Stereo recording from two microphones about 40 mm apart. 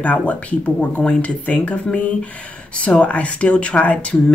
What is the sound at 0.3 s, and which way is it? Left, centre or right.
Speech, left.